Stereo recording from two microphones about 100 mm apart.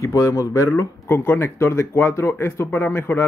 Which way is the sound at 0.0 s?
30° left (ahead or behind).